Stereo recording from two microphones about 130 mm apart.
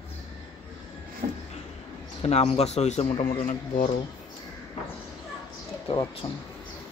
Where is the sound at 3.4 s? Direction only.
80° left.